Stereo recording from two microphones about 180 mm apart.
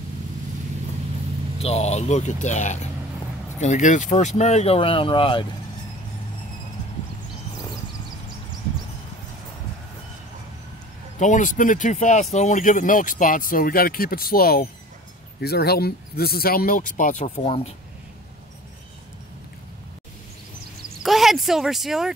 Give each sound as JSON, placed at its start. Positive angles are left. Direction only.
{"t": 1.6, "sound": "speech", "side_deg": 35}
{"t": 11.1, "sound": "speech", "side_deg": 45}
{"t": 21.0, "sound": "a sound", "side_deg": 0}